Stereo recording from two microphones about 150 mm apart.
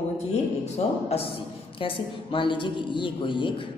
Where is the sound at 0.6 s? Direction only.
45° left (ahead or behind).